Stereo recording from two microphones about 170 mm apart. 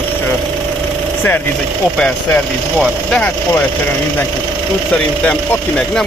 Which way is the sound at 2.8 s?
5° left (ahead or behind).